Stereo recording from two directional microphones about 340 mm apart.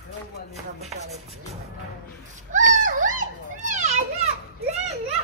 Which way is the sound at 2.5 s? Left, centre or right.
Right.